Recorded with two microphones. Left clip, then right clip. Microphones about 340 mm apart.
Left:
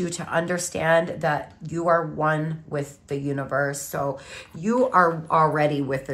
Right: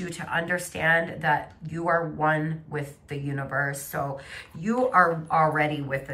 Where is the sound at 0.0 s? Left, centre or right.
Centre.